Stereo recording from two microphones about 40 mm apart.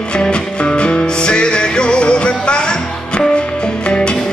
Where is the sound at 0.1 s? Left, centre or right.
Left.